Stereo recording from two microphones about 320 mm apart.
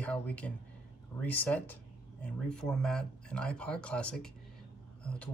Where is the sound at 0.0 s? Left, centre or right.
Centre.